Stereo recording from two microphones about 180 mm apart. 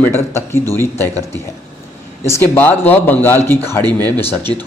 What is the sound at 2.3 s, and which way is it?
Speech, 15° left (ahead or behind).